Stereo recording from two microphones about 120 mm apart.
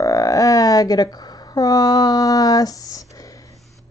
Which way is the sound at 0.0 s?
30° left (ahead or behind).